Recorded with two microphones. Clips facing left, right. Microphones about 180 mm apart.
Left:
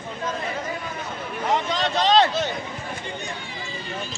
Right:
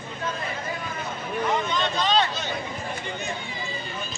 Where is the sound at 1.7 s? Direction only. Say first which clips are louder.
Left 4 dB; 90° left.